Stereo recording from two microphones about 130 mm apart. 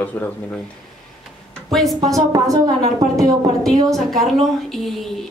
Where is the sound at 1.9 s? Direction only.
25° right (ahead or behind).